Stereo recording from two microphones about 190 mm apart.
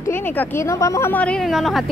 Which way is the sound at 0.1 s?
15° left (ahead or behind).